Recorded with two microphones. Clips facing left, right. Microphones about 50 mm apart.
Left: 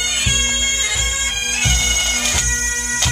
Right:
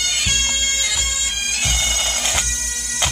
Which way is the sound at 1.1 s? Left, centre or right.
Left.